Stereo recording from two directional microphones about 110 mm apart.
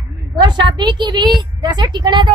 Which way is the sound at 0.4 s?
40° right (ahead or behind).